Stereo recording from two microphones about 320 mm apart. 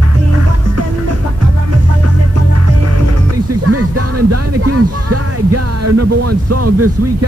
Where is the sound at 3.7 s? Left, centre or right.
Right.